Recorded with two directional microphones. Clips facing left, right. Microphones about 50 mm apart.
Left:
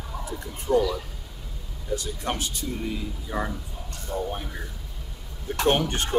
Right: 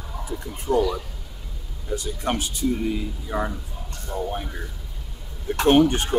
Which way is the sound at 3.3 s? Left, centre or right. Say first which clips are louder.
Right 3 dB; centre.